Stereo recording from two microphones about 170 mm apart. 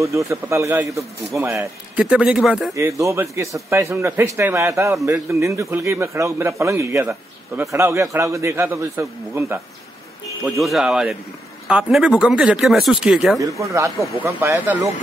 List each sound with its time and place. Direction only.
0.0 s a man's voice: 15° right (ahead or behind)
2.7 s a man's voice: 20° right (ahead or behind)
10.4 s speech: centre (ahead or behind)
13.4 s a man's voice: 20° right (ahead or behind)